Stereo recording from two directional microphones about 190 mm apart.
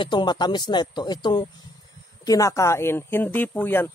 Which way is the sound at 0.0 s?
25° left (ahead or behind).